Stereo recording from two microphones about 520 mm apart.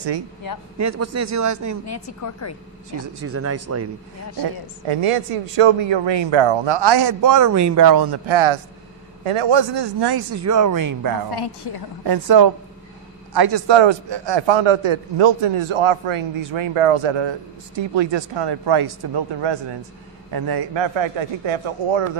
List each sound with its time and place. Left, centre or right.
0.7 s a man's voice: right
1.9 s a woman's voice: left
3.2 s speech: right
4.8 s a man's voice: right
8.3 s a man's voice: right
10.3 s a man's voice: right
11.3 s a woman's voice: left
12.1 s a man's voice: right